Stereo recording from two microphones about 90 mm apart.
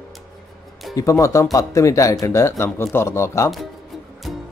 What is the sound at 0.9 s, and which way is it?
Speech, 35° left (ahead or behind).